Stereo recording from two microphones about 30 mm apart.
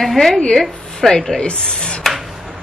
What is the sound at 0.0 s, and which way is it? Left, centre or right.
Speech, centre.